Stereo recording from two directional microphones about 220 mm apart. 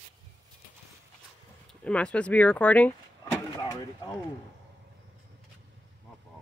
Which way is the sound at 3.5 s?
20° left (ahead or behind).